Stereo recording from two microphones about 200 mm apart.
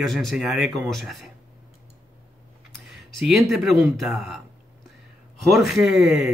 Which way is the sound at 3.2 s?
Centre (ahead or behind).